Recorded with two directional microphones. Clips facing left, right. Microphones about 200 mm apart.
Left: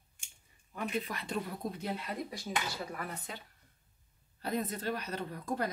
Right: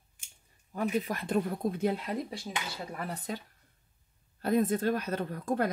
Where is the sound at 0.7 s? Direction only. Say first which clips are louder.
Right 6 dB; 45° right (ahead or behind).